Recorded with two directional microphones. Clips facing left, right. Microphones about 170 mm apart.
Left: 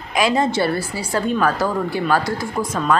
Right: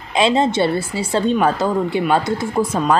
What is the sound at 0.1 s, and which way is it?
Speech, 25° right (ahead or behind).